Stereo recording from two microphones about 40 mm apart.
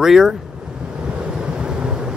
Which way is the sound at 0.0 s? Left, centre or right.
Centre.